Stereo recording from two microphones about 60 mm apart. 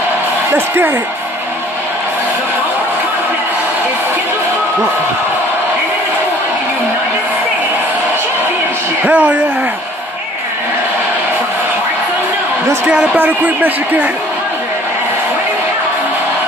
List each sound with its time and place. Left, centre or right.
0.5 s speech: right
9.0 s speech: right
13.1 s speech: right